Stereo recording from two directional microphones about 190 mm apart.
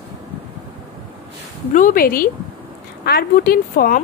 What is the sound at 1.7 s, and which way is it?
A woman's voice, 45° left (ahead or behind).